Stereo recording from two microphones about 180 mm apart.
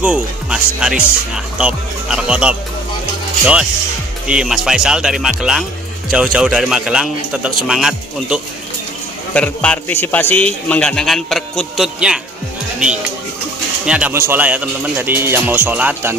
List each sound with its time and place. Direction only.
0.0 s a man's voice: 5° right (ahead or behind)
4.3 s a man's voice: 5° right (ahead or behind)
13.8 s speech: 5° right (ahead or behind)